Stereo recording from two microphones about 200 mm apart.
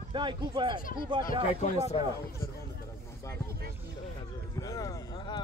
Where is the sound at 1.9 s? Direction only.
25° left (ahead or behind).